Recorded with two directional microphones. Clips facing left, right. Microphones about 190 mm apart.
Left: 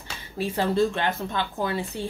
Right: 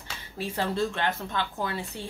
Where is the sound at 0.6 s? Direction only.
10° left (ahead or behind).